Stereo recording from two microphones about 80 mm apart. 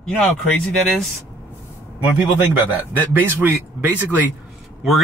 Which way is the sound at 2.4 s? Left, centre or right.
Right.